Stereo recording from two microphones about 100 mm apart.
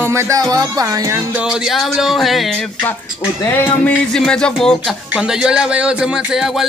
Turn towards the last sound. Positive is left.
turn(degrees=-10)  # may be behind; listen again after turning